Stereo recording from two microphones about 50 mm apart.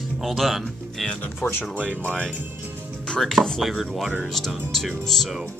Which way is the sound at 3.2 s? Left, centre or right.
Centre.